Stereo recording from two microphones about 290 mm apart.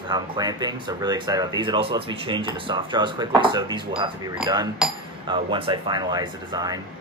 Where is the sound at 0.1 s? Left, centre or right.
Centre.